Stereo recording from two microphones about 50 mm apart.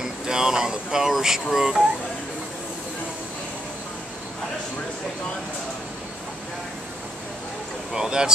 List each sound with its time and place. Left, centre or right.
0.0 s speech: centre
7.9 s speech: centre